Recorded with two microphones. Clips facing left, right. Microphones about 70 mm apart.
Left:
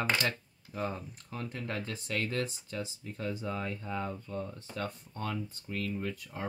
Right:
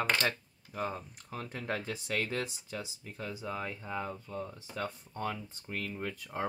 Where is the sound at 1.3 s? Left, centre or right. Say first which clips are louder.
Right 1 dB; right.